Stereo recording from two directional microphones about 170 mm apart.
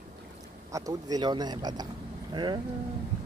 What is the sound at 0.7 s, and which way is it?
Speech, 20° right (ahead or behind).